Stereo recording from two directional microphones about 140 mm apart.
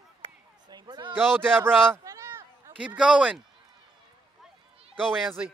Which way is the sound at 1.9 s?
20° right (ahead or behind).